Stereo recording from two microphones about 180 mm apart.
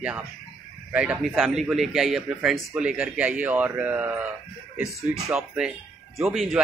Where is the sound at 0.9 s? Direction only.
5° right (ahead or behind).